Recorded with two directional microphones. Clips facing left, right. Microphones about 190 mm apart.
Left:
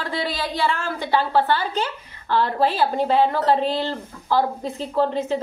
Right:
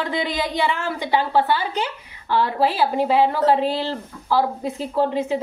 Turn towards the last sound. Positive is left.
turn(degrees=-10)  # may be behind; listen again after turning